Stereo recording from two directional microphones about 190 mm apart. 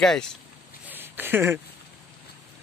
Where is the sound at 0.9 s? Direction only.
10° right (ahead or behind).